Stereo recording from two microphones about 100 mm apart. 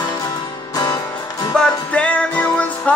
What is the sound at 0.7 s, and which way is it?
Music, 35° left (ahead or behind).